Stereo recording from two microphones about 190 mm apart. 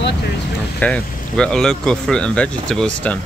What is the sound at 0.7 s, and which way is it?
Speech, 5° left (ahead or behind).